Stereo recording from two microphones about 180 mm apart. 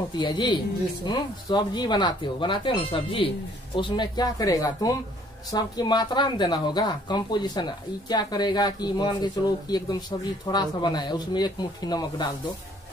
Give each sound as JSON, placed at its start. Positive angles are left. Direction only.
{"t": 0.2, "sound": "speech", "side_deg": 25}